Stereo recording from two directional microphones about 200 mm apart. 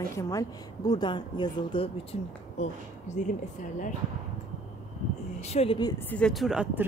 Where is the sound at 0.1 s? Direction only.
15° left (ahead or behind).